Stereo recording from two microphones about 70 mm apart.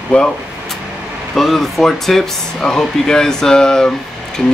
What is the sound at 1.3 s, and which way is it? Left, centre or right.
Speech, centre.